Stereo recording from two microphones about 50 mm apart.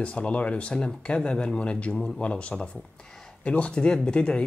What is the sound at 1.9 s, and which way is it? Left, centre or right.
Speech, centre.